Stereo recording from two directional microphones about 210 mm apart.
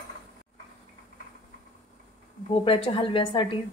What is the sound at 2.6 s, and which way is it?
Speech, 25° left (ahead or behind).